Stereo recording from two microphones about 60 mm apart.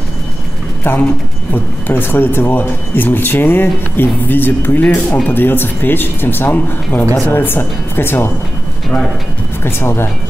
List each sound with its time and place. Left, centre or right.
0.8 s speech: left
9.6 s speech: left